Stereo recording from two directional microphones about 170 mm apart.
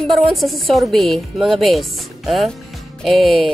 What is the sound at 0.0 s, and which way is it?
A woman's voice, centre (ahead or behind).